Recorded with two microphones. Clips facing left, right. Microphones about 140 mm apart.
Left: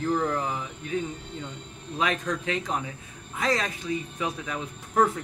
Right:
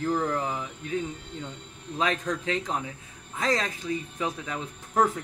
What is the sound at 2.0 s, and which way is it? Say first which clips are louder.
A man's voice: even; 25° right (ahead or behind).